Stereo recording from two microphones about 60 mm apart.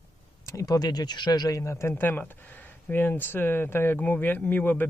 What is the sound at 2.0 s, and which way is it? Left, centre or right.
Speech, left.